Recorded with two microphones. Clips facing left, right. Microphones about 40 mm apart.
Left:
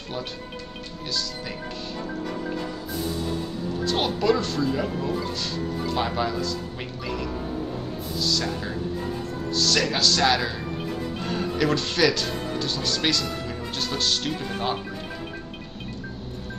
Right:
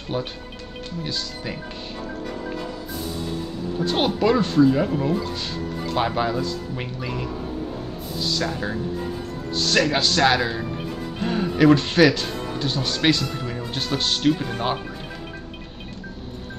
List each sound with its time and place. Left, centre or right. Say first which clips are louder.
0.1 s speech: right 4 dB; right
3.8 s speech: right 3 dB; centre